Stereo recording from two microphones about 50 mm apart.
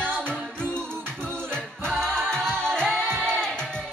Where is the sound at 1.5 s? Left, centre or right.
Centre.